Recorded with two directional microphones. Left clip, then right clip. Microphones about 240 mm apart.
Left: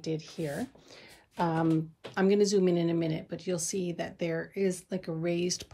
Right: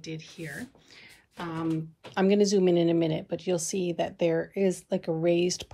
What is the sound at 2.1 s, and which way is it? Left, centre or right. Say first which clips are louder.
A woman's voice: right 2 dB; centre.